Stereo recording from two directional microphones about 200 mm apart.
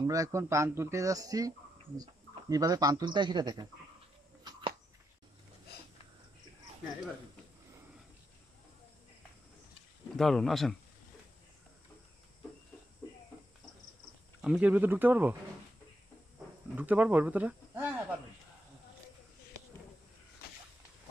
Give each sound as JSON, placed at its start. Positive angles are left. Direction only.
{"t": 0.0, "sound": "speech", "side_deg": -15}
{"t": 2.5, "sound": "speech", "side_deg": -20}
{"t": 4.5, "sound": "a sound", "side_deg": -25}
{"t": 10.1, "sound": "speech", "side_deg": 0}
{"t": 14.4, "sound": "speech", "side_deg": -5}
{"t": 16.7, "sound": "speech", "side_deg": -10}